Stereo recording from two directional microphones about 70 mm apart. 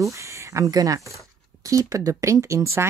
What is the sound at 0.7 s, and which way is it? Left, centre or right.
Speech, right.